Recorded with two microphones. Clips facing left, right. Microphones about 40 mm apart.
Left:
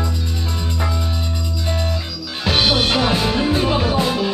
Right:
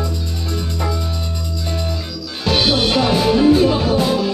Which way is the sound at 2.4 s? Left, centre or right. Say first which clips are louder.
Right 1 dB; centre.